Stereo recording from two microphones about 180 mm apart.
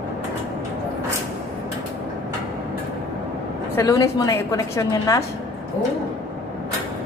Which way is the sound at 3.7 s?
20° left (ahead or behind).